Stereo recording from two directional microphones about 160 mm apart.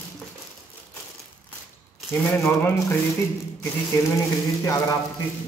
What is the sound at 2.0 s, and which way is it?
Speech, 10° left (ahead or behind).